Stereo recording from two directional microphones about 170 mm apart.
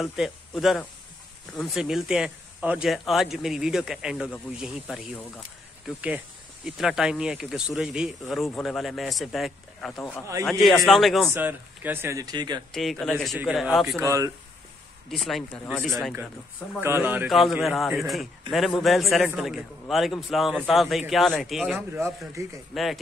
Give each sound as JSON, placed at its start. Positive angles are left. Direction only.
{"t": 0.0, "sound": "a man's voice", "side_deg": 0}
{"t": 11.3, "sound": "speech", "side_deg": -10}
{"t": 12.7, "sound": "a man's voice", "side_deg": 0}
{"t": 13.9, "sound": "speech", "side_deg": -20}
{"t": 15.0, "sound": "a man's voice", "side_deg": 0}
{"t": 16.8, "sound": "speech", "side_deg": -15}
{"t": 17.3, "sound": "a man's voice", "side_deg": 0}
{"t": 21.7, "sound": "speech", "side_deg": -15}
{"t": 22.7, "sound": "a man's voice", "side_deg": 0}